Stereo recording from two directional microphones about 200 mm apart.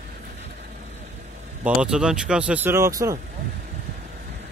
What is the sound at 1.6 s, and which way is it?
Speech, 5° right (ahead or behind).